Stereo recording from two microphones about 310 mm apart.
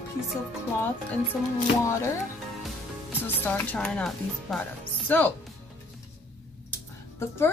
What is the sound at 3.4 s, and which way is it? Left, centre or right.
Speech, centre.